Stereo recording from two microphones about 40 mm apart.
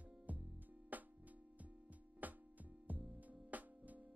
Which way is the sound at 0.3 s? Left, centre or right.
Right.